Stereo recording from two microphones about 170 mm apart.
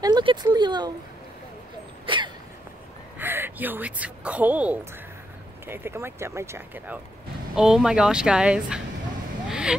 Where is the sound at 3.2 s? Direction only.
10° right (ahead or behind).